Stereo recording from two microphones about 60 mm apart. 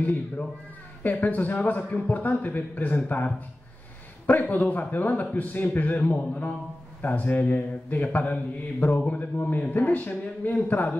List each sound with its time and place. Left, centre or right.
0.0 s a man's voice: left
4.3 s a man's voice: left